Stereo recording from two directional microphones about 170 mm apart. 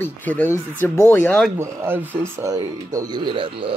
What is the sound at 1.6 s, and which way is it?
Speech, 15° right (ahead or behind).